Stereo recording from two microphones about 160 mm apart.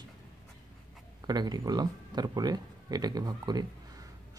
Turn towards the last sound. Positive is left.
turn(degrees=-25)  # may be behind; listen again after turning